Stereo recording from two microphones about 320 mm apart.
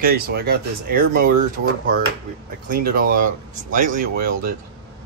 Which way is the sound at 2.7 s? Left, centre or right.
Right.